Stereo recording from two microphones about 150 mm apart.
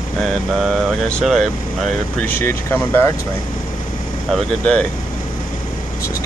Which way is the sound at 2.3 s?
15° left (ahead or behind).